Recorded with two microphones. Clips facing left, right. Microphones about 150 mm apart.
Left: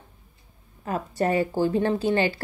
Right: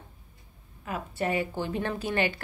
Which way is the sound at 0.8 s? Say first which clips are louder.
Left 6 dB; 40° left (ahead or behind).